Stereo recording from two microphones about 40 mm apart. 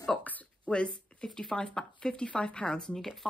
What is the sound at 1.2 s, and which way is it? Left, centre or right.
Speech, centre.